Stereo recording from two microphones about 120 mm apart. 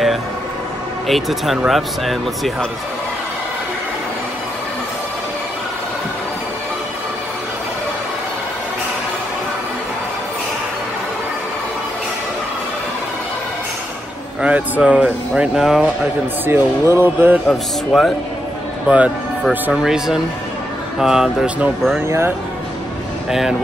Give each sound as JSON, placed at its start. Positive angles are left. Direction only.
{"t": 1.0, "sound": "speech", "side_deg": 0}
{"t": 14.4, "sound": "speech", "side_deg": -10}
{"t": 16.4, "sound": "speech", "side_deg": -20}
{"t": 17.5, "sound": "speech", "side_deg": 0}
{"t": 18.9, "sound": "speech", "side_deg": -10}
{"t": 22.0, "sound": "speech", "side_deg": -20}